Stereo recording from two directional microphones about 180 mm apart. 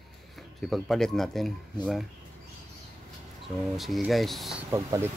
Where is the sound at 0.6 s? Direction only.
Centre (ahead or behind).